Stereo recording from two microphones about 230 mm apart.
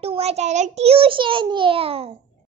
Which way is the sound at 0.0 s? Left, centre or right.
Right.